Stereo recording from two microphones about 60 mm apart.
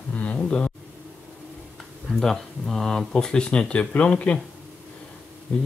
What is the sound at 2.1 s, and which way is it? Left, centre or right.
Speech, centre.